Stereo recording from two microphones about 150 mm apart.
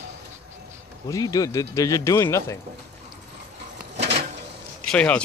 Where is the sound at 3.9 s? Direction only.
45° right (ahead or behind).